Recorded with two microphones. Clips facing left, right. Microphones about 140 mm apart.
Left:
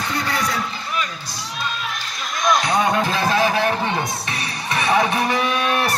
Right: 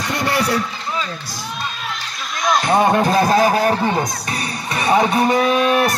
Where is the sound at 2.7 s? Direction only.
35° right (ahead or behind).